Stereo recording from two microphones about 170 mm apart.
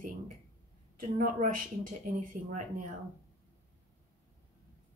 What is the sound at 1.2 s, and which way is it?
Speech, 55° right (ahead or behind).